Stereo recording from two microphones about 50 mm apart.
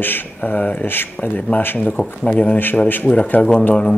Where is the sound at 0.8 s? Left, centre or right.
Left.